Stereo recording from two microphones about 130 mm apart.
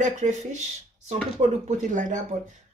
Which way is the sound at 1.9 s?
75° right (ahead or behind).